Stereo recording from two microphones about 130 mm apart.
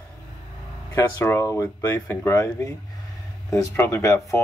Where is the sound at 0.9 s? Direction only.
20° left (ahead or behind).